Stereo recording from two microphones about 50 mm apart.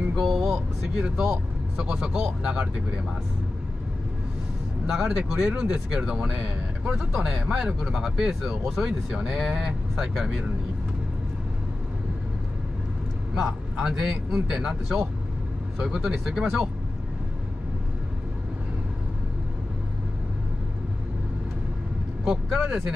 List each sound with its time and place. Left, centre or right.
0.1 s a sound: centre
1.0 s speech: centre
4.8 s speech: centre
13.3 s speech: centre
16.1 s speech: centre
22.3 s speech: centre